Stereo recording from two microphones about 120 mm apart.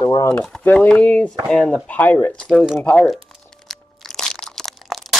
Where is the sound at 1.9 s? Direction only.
15° left (ahead or behind).